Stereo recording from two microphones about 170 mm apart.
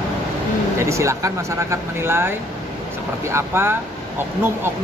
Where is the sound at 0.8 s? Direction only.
15° right (ahead or behind).